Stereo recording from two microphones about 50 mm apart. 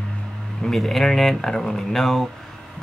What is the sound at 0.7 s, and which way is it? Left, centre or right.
Speech, centre.